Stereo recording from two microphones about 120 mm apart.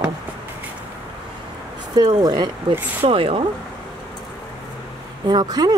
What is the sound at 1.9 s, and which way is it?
Speech, 35° right (ahead or behind).